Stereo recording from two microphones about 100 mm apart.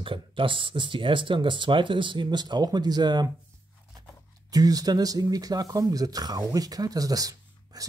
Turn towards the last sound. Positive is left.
turn(degrees=-35)  # may be behind; listen again after turning